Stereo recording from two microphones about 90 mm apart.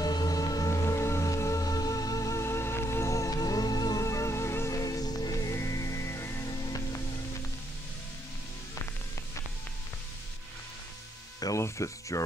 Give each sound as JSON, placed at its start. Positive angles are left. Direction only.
{"t": 0.0, "sound": "music", "side_deg": 45}
{"t": 6.5, "sound": "music", "side_deg": 45}
{"t": 11.3, "sound": "music", "side_deg": 45}
{"t": 11.6, "sound": "speech", "side_deg": 35}